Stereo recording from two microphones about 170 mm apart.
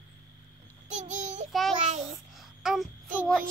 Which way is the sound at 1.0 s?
45° right (ahead or behind).